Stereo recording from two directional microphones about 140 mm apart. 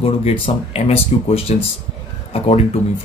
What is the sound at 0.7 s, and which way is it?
Speech, 45° left (ahead or behind).